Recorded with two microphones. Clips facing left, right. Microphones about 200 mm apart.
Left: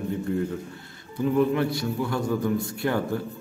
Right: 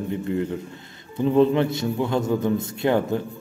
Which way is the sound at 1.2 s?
25° right (ahead or behind).